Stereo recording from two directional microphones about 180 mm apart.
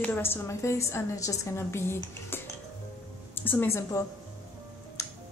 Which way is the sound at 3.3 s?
10° left (ahead or behind).